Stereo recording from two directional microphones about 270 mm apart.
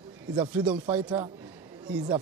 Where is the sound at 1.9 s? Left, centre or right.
Centre.